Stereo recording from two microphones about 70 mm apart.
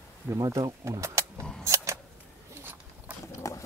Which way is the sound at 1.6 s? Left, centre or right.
Right.